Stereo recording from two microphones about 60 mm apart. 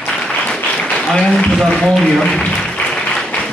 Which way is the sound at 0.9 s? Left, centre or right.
Centre.